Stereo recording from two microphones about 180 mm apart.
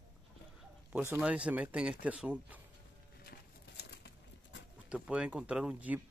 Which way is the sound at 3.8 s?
65° left (ahead or behind).